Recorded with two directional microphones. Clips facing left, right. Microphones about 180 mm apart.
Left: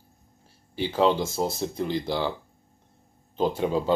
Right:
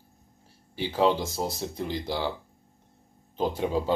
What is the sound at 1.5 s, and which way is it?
Speech, 10° right (ahead or behind).